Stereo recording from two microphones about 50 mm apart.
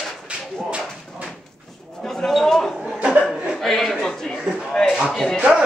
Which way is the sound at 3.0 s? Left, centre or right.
Right.